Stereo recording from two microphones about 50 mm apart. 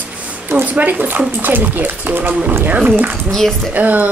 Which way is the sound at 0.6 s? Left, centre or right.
Right.